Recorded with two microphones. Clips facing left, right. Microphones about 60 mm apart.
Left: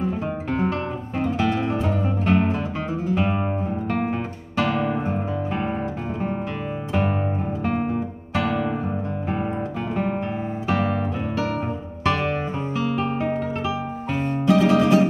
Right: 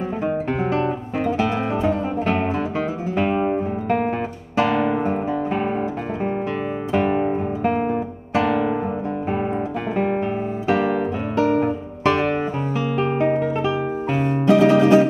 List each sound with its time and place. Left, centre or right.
1.4 s music: centre
6.9 s music: centre
9.9 s guitar: centre
12.9 s music: right